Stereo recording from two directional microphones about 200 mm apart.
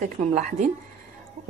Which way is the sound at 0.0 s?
40° right (ahead or behind).